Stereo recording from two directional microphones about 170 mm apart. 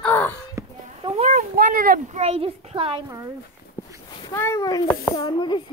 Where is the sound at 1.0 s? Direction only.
35° right (ahead or behind).